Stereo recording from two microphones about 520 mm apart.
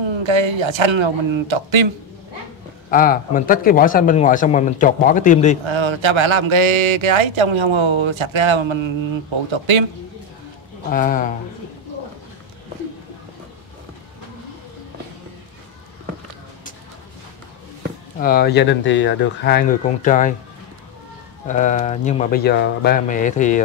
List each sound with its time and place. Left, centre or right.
0.0 s a man's voice: right
2.9 s speech: centre
5.7 s a man's voice: right
10.9 s speech: centre
18.2 s speech: centre
21.5 s speech: centre